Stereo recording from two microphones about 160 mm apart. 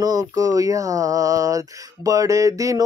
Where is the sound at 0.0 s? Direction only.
20° right (ahead or behind).